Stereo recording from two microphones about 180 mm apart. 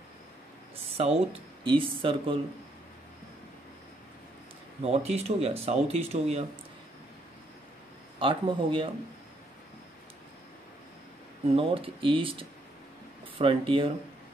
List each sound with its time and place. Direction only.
0.9 s speech: 35° right (ahead or behind)
4.8 s speech: 35° right (ahead or behind)
8.2 s speech: 30° right (ahead or behind)
11.5 s speech: 30° right (ahead or behind)